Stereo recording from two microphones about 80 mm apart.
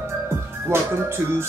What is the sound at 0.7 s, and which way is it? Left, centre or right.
Music, right.